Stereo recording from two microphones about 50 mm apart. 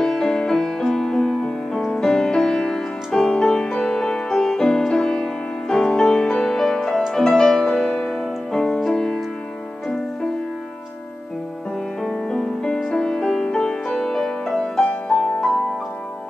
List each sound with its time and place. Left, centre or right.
0.0 s music: centre
12.0 s music: centre